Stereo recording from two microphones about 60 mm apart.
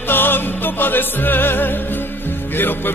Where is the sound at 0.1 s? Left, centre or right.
Left.